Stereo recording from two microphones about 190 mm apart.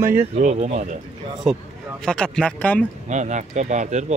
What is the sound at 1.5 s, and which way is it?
Speech, 5° right (ahead or behind).